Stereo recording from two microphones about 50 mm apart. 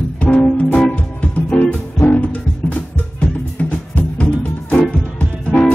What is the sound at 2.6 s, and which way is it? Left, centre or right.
Music, left.